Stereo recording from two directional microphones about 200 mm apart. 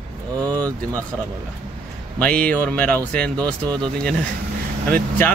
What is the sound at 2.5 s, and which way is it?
A man's voice, 5° left (ahead or behind).